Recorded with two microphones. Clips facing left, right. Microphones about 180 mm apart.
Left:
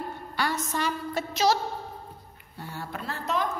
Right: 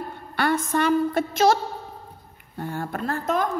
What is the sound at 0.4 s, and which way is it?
A woman's voice, 55° right (ahead or behind).